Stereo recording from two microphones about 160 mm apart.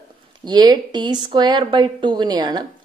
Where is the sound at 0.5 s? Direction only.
25° right (ahead or behind).